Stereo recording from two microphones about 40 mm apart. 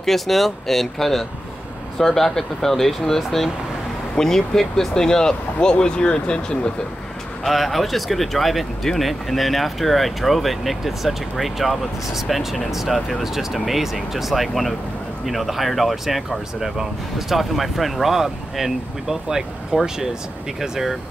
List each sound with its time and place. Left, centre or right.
0.0 s speech: centre; by 6.7 s left
7.4 s speech: centre